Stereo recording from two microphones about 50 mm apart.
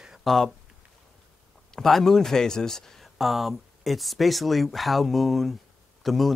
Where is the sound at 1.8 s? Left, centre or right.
Centre.